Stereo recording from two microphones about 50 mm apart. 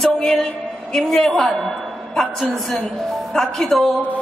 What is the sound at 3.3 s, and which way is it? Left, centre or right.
Speech, centre.